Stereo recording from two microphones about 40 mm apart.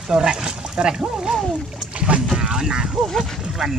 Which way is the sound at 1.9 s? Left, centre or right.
Right.